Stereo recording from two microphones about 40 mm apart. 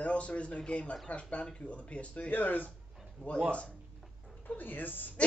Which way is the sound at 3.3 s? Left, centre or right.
Left.